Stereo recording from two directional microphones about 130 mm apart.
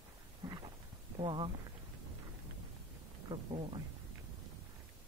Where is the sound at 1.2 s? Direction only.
40° right (ahead or behind).